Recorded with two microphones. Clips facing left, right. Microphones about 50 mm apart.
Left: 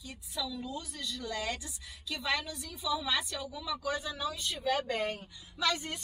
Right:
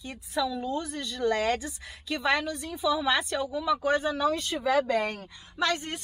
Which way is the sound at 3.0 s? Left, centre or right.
Right.